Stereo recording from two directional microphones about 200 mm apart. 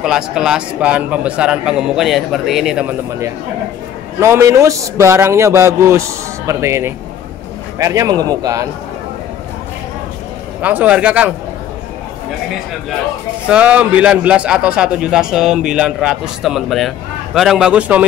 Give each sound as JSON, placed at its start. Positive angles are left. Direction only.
{"t": 0.0, "sound": "a man's voice", "side_deg": -5}
{"t": 10.6, "sound": "a man's voice", "side_deg": -10}
{"t": 13.5, "sound": "a man's voice", "side_deg": -5}